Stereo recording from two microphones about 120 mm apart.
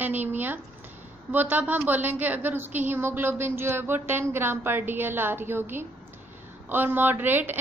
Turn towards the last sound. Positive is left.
turn(degrees=-15)  # may be behind; listen again after turning